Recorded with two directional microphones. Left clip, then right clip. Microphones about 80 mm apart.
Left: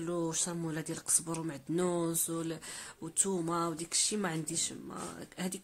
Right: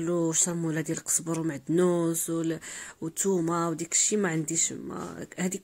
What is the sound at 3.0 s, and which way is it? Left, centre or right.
Speech, right.